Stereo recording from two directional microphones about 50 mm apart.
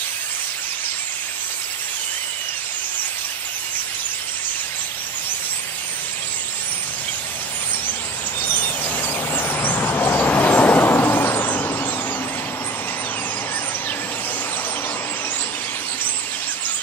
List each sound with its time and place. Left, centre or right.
8.9 s vehicle: left